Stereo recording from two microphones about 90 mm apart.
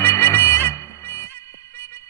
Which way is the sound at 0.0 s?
25° left (ahead or behind).